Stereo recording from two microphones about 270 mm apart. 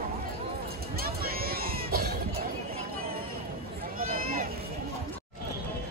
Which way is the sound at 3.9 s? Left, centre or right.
Right.